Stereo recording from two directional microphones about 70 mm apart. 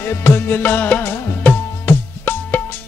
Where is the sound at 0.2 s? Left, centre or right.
Left.